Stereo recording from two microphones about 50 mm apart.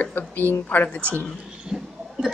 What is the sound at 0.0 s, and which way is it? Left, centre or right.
Speech, left.